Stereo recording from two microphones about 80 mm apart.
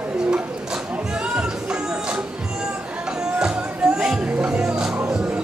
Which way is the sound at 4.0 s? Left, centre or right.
Centre.